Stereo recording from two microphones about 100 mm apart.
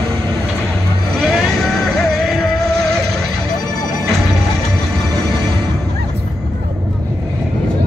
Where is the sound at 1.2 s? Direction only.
Centre (ahead or behind).